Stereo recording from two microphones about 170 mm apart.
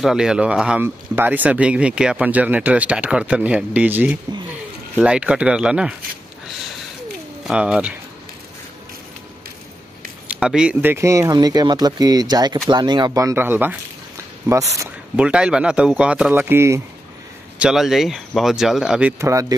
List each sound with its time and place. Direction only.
0.0 s speech: 5° right (ahead or behind)
7.4 s speech: 5° right (ahead or behind)
10.2 s speech: 5° right (ahead or behind)
15.1 s speech: 5° right (ahead or behind)
17.6 s speech: 5° right (ahead or behind)